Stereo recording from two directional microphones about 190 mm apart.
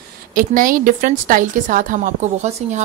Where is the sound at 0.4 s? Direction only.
45° right (ahead or behind).